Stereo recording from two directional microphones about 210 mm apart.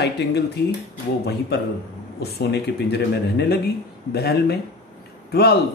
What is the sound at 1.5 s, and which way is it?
Speech, 50° left (ahead or behind).